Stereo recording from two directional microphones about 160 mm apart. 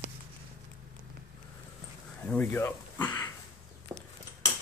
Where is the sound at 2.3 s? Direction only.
10° left (ahead or behind).